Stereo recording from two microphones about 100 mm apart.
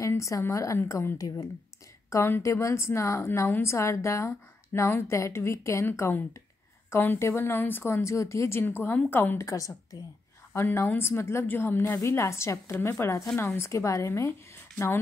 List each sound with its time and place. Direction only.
0.0 s a woman's voice: 30° left (ahead or behind)
9.5 s a woman's voice: 35° left (ahead or behind)